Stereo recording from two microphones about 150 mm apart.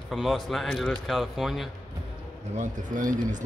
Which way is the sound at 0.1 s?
Centre (ahead or behind).